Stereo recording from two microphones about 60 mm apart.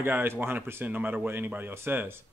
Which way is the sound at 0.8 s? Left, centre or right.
Right.